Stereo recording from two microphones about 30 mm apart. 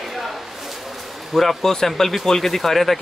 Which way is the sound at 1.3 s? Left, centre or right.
Centre.